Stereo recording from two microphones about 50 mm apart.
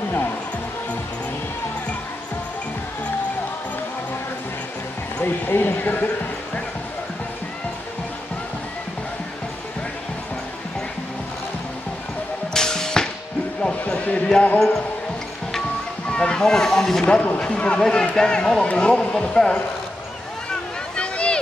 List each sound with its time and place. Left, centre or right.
5.2 s speech: left
12.5 s music: centre
13.6 s basketball bounce: left
16.1 s speech: centre
17.0 s speech: left
20.9 s a sound: left